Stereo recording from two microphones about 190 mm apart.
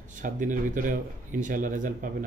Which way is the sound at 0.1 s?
45° right (ahead or behind).